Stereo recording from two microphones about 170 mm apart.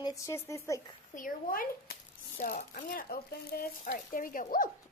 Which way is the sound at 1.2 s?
55° left (ahead or behind).